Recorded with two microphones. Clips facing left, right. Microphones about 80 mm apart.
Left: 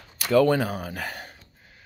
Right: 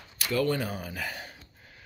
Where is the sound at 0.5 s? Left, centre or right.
Left.